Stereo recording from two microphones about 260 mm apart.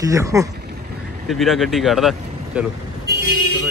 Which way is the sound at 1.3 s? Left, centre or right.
Centre.